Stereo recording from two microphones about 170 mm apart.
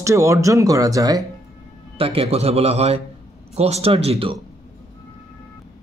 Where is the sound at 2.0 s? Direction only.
35° right (ahead or behind).